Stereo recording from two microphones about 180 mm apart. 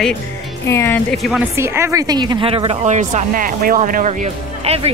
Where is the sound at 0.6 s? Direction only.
15° left (ahead or behind).